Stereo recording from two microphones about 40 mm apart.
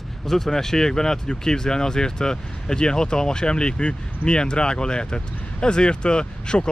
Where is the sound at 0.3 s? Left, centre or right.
Centre.